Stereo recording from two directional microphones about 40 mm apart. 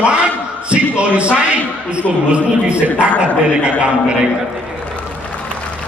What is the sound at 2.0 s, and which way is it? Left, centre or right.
Speech, left.